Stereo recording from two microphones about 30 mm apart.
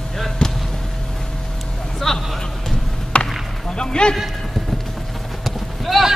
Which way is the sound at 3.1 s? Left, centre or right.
Left.